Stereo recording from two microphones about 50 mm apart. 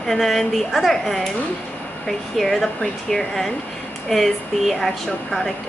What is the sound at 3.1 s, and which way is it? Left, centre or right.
Speech, centre.